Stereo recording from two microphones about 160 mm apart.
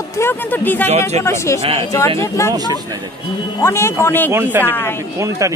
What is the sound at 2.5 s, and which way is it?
Speech, 25° right (ahead or behind).